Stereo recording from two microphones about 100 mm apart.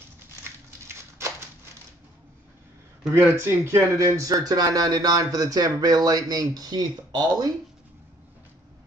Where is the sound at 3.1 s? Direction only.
25° right (ahead or behind).